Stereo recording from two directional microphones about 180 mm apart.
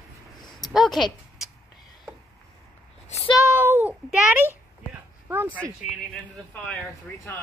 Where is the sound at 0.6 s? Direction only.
Centre (ahead or behind).